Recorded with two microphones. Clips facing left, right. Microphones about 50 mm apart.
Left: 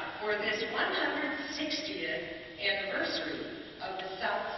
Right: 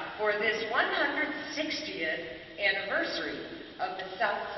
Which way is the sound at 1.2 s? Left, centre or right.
Right.